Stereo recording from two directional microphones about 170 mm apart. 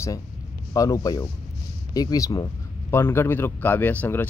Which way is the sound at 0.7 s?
20° left (ahead or behind).